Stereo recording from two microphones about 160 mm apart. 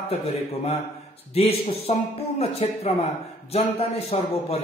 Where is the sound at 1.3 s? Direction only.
40° left (ahead or behind).